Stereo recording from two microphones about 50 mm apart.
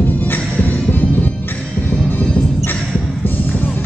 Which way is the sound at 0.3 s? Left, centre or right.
Left.